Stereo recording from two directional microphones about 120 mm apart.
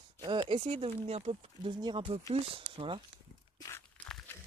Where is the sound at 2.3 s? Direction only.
55° right (ahead or behind).